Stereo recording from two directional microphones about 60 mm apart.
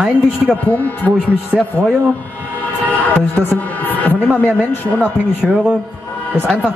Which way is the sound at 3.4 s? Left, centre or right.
Left.